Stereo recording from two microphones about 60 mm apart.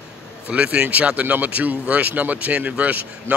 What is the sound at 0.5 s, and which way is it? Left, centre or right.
Speech, centre.